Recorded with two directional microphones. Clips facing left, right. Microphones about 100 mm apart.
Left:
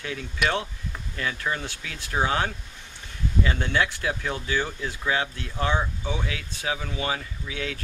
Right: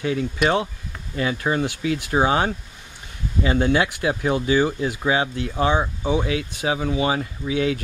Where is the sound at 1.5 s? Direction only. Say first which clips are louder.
Right 9 dB; 30° right (ahead or behind).